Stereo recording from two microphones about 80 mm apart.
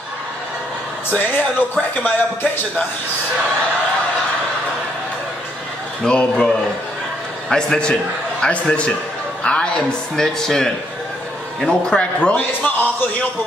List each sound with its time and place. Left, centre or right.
1.1 s speech: left
6.0 s a man's voice: centre